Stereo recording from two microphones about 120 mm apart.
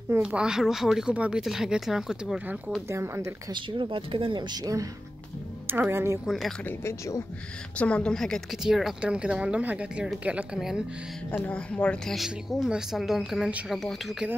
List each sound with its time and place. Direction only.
0.2 s a woman's voice: 5° right (ahead or behind)
2.9 s a woman's voice: 20° right (ahead or behind)
3.5 s speech: 40° right (ahead or behind)
5.7 s a woman's voice: 20° right (ahead or behind)
6.2 s a woman's voice: centre (ahead or behind)
6.6 s speech: 20° left (ahead or behind)
7.7 s a woman's voice: 10° left (ahead or behind); by 10.8 s 5° right (ahead or behind)
11.3 s speech: 10° left (ahead or behind)
12.2 s a woman's voice: centre (ahead or behind)